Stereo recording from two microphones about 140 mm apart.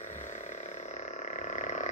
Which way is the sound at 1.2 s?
60° left (ahead or behind).